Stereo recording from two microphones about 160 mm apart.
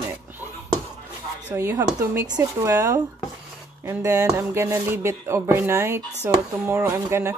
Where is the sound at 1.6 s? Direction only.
15° right (ahead or behind).